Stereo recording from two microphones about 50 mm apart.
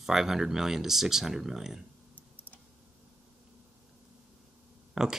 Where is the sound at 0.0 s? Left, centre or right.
Centre.